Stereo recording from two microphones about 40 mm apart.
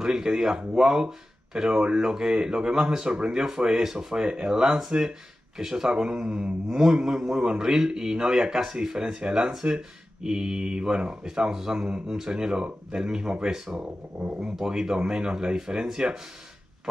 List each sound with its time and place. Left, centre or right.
0.0 s speech: centre
6.7 s speech: centre
14.2 s speech: centre